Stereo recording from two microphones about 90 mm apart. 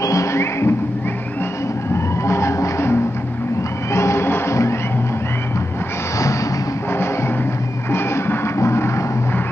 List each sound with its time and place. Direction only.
0.0 s music: 35° left (ahead or behind)
2.2 s music: 30° left (ahead or behind)
7.9 s music: 30° left (ahead or behind)